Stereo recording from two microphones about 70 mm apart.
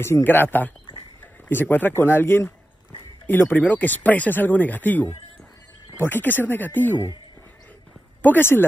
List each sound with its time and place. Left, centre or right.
0.0 s speech: left
8.2 s speech: left